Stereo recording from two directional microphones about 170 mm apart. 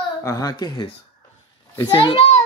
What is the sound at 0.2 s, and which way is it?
Speech, 20° left (ahead or behind).